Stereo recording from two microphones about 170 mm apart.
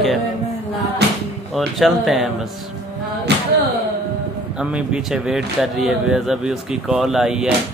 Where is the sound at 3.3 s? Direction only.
80° right.